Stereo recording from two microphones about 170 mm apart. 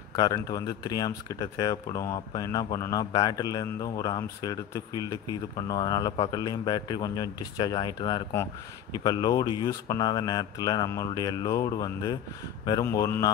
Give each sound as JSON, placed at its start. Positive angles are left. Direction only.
{"t": 0.1, "sound": "speech", "side_deg": 20}